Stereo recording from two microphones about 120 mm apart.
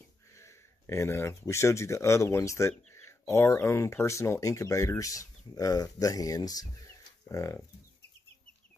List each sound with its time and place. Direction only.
0.3 s speech: 25° left (ahead or behind)